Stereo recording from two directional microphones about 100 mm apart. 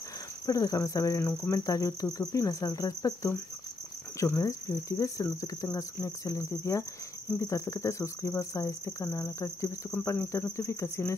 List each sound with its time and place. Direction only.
0.5 s cricket: 35° left (ahead or behind)
1.2 s speech: 20° left (ahead or behind)
1.6 s cricket: 35° left (ahead or behind)
10.0 s speech: 25° left (ahead or behind)